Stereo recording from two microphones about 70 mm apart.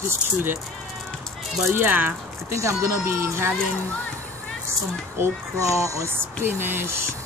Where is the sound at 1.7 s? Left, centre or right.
Right.